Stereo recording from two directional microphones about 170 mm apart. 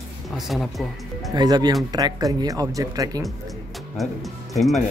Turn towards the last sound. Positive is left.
turn(degrees=0)  # may be behind; listen again after turning